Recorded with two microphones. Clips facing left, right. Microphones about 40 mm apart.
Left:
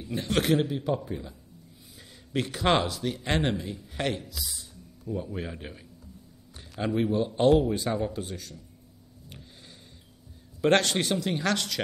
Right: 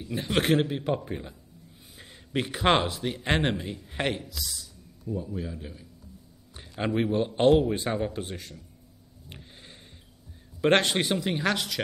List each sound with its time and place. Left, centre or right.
0.1 s speech: centre
0.4 s a man's voice: right
2.0 s a sound: right
2.3 s speech: right
4.3 s speech: centre
5.1 s a man's voice: left
6.8 s a man's voice: right
9.3 s a sound: right
10.6 s speech: right